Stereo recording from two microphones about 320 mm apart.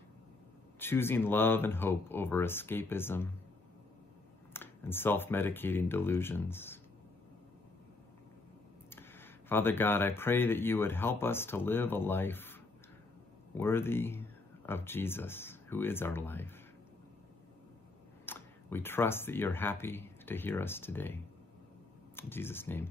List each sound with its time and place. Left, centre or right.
0.7 s speech: centre
4.6 s speech: centre
8.9 s speech: centre
13.6 s speech: centre
18.2 s speech: centre